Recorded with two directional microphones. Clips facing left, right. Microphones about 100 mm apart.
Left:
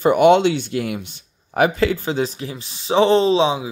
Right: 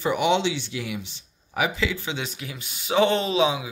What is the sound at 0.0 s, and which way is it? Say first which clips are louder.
Speech: left 9 dB; 50° left (ahead or behind).